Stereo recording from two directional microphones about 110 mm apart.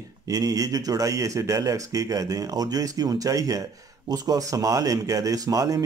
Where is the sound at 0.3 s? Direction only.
35° right (ahead or behind).